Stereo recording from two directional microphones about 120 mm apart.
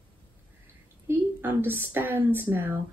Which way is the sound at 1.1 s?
20° right (ahead or behind).